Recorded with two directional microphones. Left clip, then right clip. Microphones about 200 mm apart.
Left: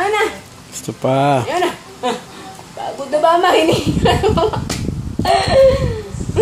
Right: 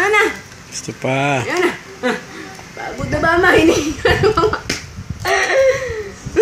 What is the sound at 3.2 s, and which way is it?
A woman's voice, 40° right (ahead or behind).